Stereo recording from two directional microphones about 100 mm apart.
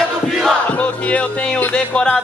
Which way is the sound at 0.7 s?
15° left (ahead or behind).